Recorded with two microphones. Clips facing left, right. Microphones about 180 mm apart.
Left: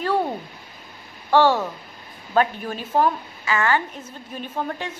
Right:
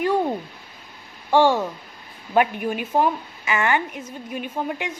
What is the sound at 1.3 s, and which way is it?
A woman's voice, 15° right (ahead or behind).